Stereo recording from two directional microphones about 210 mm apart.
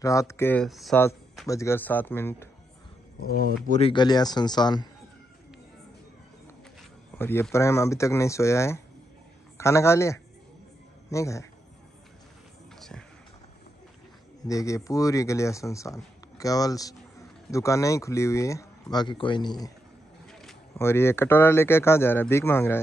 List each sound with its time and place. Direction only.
0.0 s speech: 15° left (ahead or behind); by 1.0 s centre (ahead or behind)
1.5 s speech: 15° left (ahead or behind)
3.3 s speech: 45° left (ahead or behind)
3.9 s speech: 20° left (ahead or behind)
7.2 s speech: 10° left (ahead or behind)
12.7 s music: centre (ahead or behind)
14.4 s speech: 15° left (ahead or behind)
20.7 s speech: 10° left (ahead or behind)